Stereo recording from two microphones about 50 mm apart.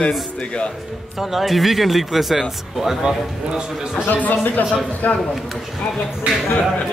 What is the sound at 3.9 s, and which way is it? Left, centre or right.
Speech, left.